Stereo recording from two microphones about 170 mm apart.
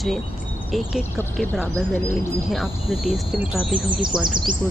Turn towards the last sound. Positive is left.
turn(degrees=-5)  # may be behind; listen again after turning